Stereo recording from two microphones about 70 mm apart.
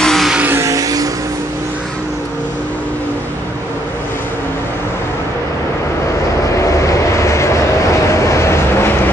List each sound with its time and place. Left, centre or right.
0.0 s vehicle: centre
0.6 s vehicle: right
6.9 s vehicle: left